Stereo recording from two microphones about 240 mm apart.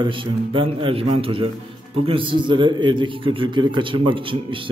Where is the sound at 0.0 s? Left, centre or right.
Right.